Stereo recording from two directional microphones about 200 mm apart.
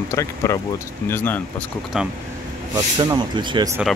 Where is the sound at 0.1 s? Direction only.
15° left (ahead or behind).